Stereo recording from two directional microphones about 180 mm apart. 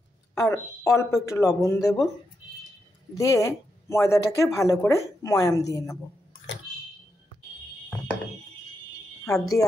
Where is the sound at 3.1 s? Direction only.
15° left (ahead or behind).